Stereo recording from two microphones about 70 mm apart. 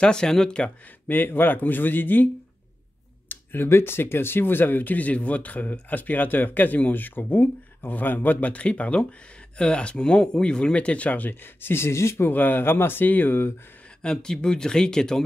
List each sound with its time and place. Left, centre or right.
0.0 s speech: centre
0.8 s speech: left
3.3 s speech: left
12.3 s speech: left
13.8 s speech: centre